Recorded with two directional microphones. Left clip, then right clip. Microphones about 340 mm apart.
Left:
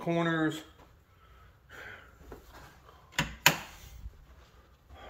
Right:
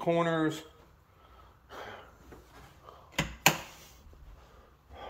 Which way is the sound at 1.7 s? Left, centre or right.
Centre.